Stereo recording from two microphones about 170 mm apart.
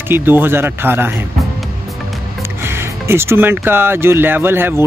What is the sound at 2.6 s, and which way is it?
Speech, 15° right (ahead or behind).